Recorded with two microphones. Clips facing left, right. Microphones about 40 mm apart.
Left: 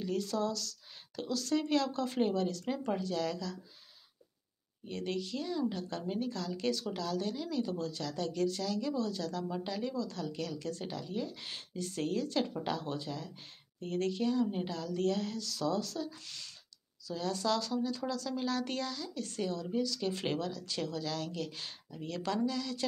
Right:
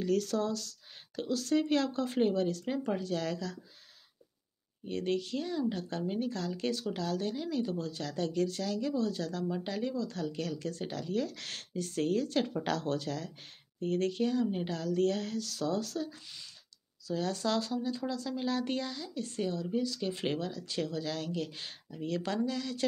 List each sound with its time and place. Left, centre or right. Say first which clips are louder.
0.0 s speech: right 4 dB; right
0.4 s a sound: right 1 dB; right
1.3 s speech: right 2 dB; right
4.8 s speech: right 4 dB; right
11.1 s speech: right 4 dB; right
11.7 s speech: right 4 dB; right
12.6 s speech: right 4 dB; right
13.7 s speech: right 3 dB; right